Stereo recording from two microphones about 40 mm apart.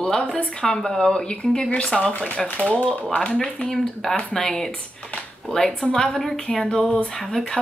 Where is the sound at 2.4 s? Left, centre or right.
Centre.